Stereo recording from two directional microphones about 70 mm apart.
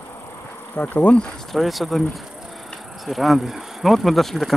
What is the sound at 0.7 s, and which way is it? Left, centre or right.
Insect, left.